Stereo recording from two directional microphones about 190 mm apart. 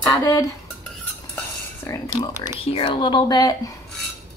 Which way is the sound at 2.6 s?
30° left (ahead or behind).